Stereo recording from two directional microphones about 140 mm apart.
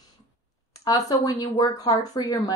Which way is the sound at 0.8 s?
25° left (ahead or behind).